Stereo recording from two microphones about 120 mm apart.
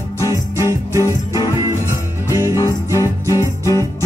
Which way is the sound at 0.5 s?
25° right (ahead or behind).